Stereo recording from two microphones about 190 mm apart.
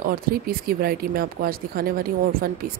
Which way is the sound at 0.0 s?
50° right (ahead or behind).